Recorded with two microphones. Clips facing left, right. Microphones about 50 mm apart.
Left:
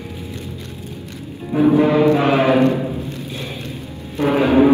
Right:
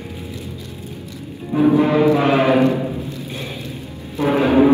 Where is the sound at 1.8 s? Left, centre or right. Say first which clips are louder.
Left 1 dB; left.